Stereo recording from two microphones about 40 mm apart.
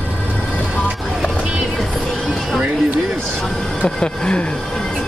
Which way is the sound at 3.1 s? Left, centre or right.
Centre.